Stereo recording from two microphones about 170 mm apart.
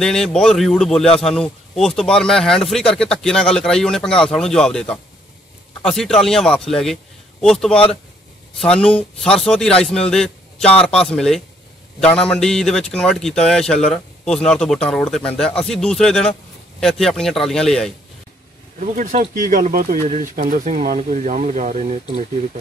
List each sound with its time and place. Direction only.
0.0 s speech: 5° left (ahead or behind)
18.8 s speech: 50° right (ahead or behind)